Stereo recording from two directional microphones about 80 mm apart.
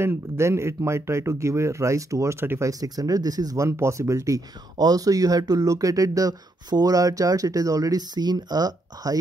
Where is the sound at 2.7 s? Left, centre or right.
Right.